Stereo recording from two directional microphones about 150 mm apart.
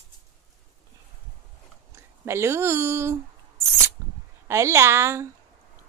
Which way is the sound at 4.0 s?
20° right (ahead or behind).